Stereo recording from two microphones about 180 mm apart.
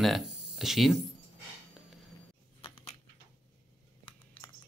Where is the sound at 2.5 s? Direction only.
30° left (ahead or behind).